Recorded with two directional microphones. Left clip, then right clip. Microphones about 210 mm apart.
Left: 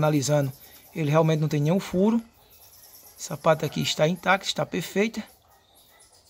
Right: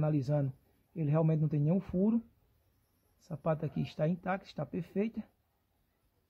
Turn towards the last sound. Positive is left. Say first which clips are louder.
# left 11 dB
turn(degrees=10)  # may be behind; listen again after turning